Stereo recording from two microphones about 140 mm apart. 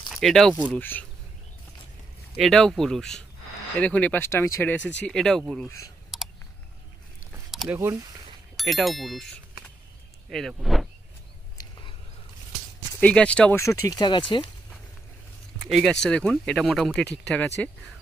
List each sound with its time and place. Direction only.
0.1 s speech: centre (ahead or behind)
0.7 s speech: 15° left (ahead or behind)
2.3 s speech: centre (ahead or behind)
6.1 s a sound: centre (ahead or behind)
7.6 s speech: 20° right (ahead or behind)
8.5 s speech: centre (ahead or behind)
10.3 s speech: centre (ahead or behind)
13.0 s speech: 10° left (ahead or behind)
13.6 s speech: 20° left (ahead or behind)
15.6 s speech: centre (ahead or behind)